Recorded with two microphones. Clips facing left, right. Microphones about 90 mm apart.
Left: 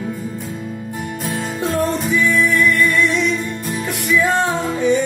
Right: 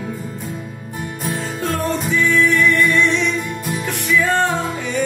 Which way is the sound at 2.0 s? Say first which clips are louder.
Even; 5° left (ahead or behind).